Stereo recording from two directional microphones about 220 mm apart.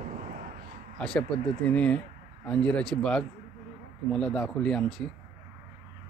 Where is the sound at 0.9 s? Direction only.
5° left (ahead or behind).